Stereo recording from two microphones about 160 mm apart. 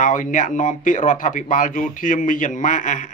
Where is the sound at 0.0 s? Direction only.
55° left (ahead or behind).